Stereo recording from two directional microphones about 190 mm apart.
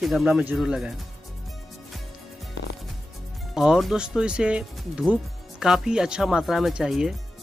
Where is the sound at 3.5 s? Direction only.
Centre (ahead or behind).